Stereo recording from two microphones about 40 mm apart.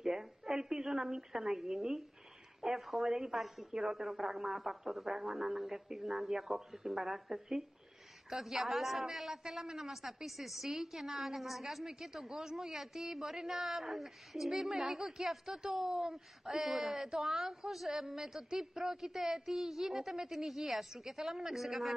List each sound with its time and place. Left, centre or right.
0.0 s telephone: centre
2.6 s a man's voice: centre
11.8 s a man's voice: centre